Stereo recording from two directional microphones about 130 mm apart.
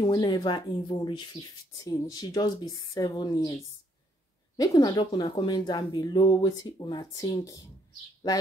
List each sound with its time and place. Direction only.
0.0 s speech: 30° left (ahead or behind)
4.6 s speech: 30° left (ahead or behind)